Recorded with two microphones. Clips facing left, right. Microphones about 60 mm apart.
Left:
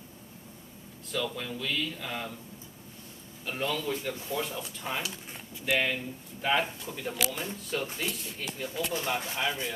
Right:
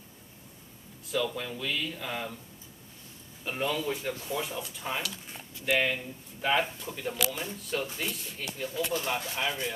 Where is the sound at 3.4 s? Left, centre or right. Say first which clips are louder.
Right 1 dB; centre.